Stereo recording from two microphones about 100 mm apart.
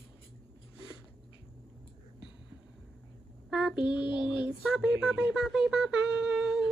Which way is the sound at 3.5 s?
10° right (ahead or behind).